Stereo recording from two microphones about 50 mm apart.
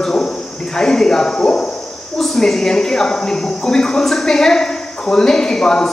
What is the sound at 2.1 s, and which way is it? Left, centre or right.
Speech, centre.